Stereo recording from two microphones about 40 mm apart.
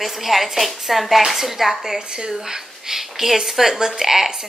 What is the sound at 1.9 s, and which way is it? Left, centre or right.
A woman's voice, centre.